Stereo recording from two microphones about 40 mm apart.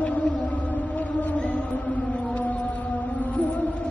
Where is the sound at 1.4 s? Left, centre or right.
Left.